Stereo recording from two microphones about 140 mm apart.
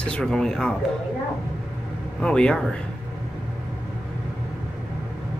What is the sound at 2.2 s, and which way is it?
Speech, 5° left (ahead or behind).